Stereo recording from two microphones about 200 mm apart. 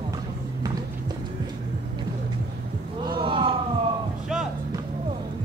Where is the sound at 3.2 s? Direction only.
25° right (ahead or behind).